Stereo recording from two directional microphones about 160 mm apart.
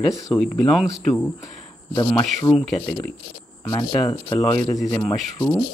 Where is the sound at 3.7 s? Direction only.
20° left (ahead or behind).